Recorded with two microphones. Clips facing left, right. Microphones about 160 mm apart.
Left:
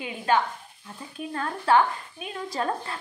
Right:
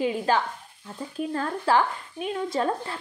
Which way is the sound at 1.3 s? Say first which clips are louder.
Left 1 dB; 30° right (ahead or behind).